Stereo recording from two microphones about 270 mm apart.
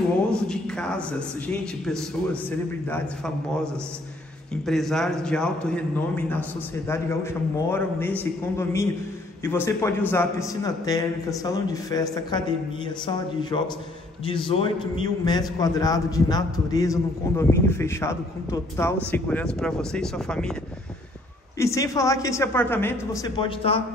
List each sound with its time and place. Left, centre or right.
0.3 s a man's voice: centre
7.7 s a man's voice: centre
21.5 s a man's voice: centre